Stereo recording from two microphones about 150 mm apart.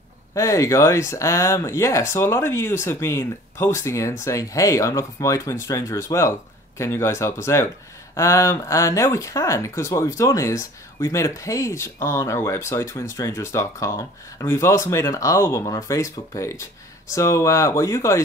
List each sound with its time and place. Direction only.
0.3 s speech: 20° left (ahead or behind)